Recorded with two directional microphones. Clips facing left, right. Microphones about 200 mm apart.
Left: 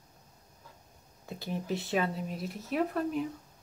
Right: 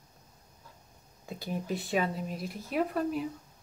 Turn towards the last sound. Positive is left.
turn(degrees=0)  # may be behind; listen again after turning